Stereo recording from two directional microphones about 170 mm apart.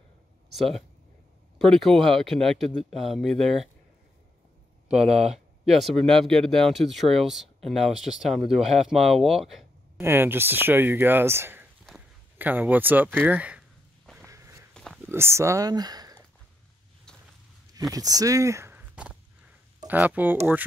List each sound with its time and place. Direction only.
0.5 s speech: centre (ahead or behind)
5.0 s speech: 40° right (ahead or behind)
5.7 s speech: centre (ahead or behind)
9.9 s speech: 15° right (ahead or behind)
13.2 s a sound: 10° right (ahead or behind)
14.2 s a sound: 15° right (ahead or behind)
14.7 s a sound: 5° left (ahead or behind)
15.0 s speech: 15° right (ahead or behind)
17.9 s speech: 20° right (ahead or behind)